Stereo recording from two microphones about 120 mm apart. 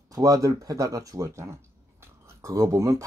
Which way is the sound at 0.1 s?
30° right (ahead or behind).